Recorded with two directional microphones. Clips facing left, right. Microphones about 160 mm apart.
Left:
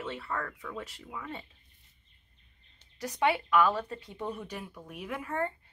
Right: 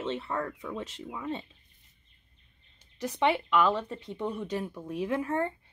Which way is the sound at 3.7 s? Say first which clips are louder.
Right 2 dB; 20° right (ahead or behind).